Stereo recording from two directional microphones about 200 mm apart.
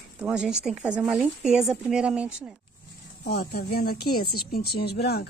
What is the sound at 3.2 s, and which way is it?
A woman's voice, 55° left (ahead or behind).